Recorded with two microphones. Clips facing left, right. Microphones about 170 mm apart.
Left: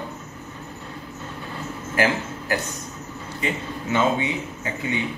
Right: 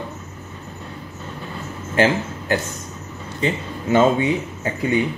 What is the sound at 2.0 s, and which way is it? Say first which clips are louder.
Speech: right 5 dB; 25° right (ahead or behind).